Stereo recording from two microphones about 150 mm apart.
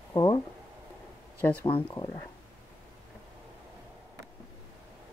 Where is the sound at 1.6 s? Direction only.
30° left (ahead or behind).